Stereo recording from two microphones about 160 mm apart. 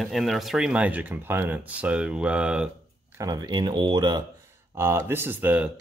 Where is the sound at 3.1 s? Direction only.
20° right (ahead or behind).